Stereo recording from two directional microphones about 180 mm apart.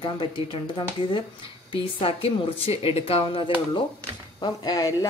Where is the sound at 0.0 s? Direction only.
25° left (ahead or behind).